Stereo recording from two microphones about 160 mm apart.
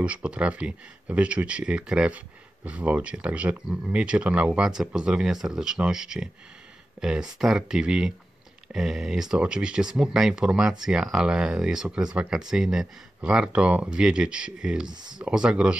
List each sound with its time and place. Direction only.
0.0 s speech: 5° right (ahead or behind)
14.9 s speech: 25° right (ahead or behind)
15.1 s speech: 5° right (ahead or behind)